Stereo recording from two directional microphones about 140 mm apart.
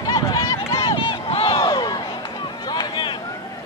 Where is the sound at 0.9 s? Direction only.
40° left (ahead or behind).